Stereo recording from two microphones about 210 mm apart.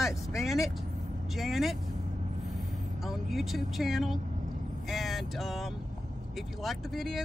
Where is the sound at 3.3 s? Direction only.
Centre (ahead or behind).